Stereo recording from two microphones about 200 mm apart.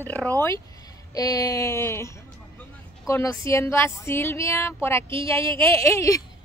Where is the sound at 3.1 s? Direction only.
15° left (ahead or behind).